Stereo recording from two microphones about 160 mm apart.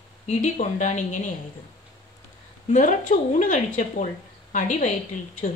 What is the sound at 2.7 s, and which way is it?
A woman's voice, 50° left (ahead or behind).